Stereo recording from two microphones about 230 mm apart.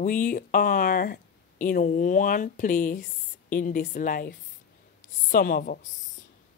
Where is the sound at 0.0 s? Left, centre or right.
Left.